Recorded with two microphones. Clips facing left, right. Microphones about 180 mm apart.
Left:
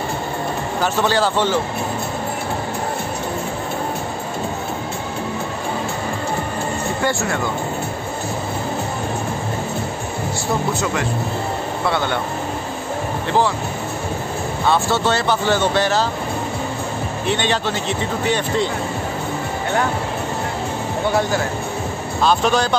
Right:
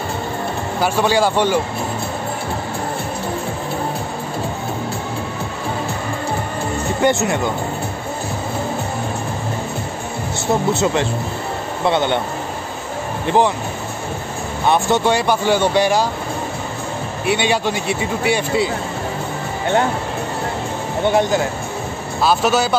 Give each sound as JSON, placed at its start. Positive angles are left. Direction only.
{"t": 0.7, "sound": "speech", "side_deg": -10}
{"t": 7.0, "sound": "speech", "side_deg": -20}
{"t": 10.7, "sound": "speech", "side_deg": -25}
{"t": 14.7, "sound": "speech", "side_deg": -15}
{"t": 17.3, "sound": "speech", "side_deg": -10}
{"t": 21.1, "sound": "speech", "side_deg": -20}
{"t": 22.2, "sound": "speech", "side_deg": -5}